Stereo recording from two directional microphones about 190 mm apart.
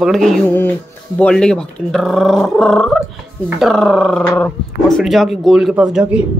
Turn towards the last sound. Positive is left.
turn(degrees=-5)  # may be behind; listen again after turning